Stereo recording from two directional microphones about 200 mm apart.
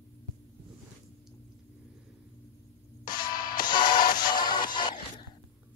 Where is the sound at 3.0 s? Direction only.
45° left (ahead or behind).